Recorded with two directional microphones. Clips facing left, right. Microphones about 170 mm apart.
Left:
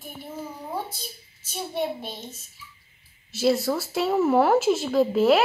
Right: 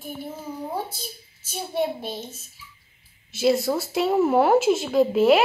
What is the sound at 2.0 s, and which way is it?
Speech, centre (ahead or behind).